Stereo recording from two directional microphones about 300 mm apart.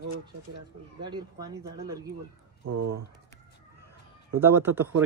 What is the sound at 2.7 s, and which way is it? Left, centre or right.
Speech, right.